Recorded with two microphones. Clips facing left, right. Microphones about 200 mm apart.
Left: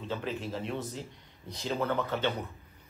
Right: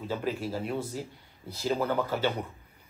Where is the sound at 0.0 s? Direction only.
10° right (ahead or behind).